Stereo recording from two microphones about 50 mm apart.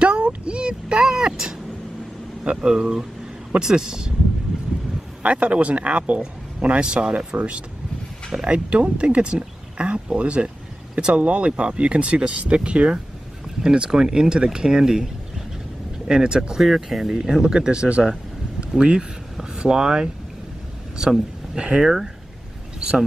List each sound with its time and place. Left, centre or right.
0.0 s child singing: right
1.0 s a sound: centre
2.4 s speech: centre
5.2 s speech: right
16.1 s speech: centre
16.6 s speech: centre
19.3 s vehicle: centre
20.9 s speech: centre
22.8 s a sound: centre